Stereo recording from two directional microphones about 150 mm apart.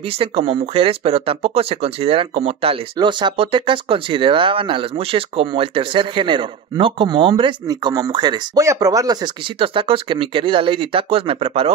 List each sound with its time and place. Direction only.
0.0 s speech: 40° right (ahead or behind)